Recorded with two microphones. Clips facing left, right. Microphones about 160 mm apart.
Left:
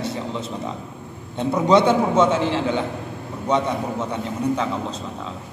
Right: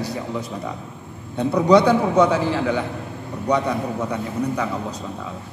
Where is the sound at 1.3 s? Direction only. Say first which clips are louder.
Right 2 dB; 20° left (ahead or behind).